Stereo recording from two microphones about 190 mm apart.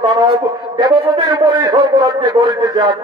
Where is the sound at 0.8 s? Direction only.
20° right (ahead or behind).